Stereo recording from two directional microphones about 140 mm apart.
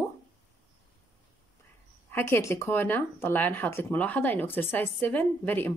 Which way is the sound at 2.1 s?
15° left (ahead or behind).